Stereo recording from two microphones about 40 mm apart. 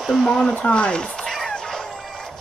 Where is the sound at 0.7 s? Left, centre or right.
Left.